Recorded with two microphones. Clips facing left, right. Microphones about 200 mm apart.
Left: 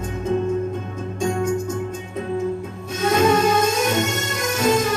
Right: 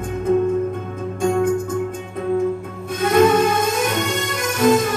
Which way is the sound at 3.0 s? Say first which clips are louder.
Right 3 dB; 55° right (ahead or behind).